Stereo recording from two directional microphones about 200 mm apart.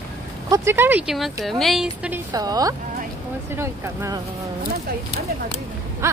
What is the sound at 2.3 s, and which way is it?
Speech, 20° right (ahead or behind).